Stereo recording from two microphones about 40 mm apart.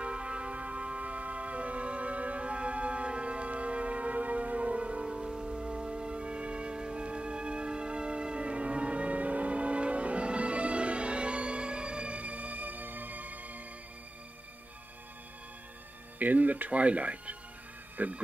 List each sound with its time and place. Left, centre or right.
0.0 s music: right
5.0 s music: centre; by 13.6 s right
16.2 s speech: right